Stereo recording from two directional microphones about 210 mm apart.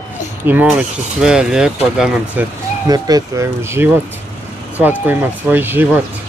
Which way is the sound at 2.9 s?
20° right (ahead or behind).